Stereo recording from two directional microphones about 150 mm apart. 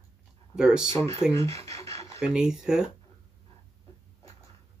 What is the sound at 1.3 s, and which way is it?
Speech, 20° left (ahead or behind).